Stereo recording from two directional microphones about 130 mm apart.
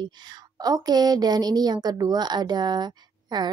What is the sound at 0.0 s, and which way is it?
A woman's voice, 35° right (ahead or behind).